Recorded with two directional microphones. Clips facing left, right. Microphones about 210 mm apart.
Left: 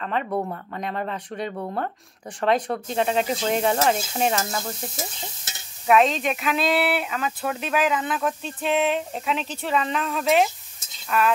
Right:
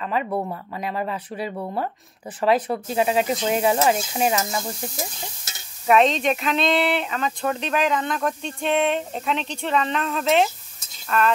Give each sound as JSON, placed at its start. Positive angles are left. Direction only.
{"t": 0.0, "sound": "speech", "side_deg": -5}
{"t": 5.9, "sound": "speech", "side_deg": 0}